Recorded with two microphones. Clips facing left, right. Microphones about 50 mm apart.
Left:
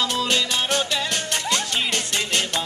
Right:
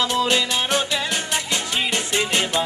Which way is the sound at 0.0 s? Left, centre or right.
Centre.